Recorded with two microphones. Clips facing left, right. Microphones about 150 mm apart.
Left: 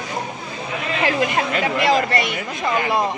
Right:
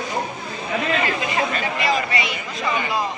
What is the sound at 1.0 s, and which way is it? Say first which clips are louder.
A woman's voice: left 3 dB; 65° left (ahead or behind).